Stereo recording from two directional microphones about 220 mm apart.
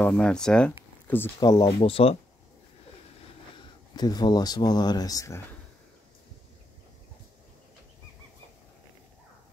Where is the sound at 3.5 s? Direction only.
20° left (ahead or behind).